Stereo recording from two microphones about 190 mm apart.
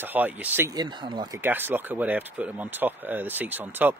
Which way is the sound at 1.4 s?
10° right (ahead or behind).